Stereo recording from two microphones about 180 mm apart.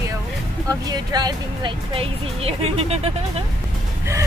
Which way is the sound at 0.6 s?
20° right (ahead or behind).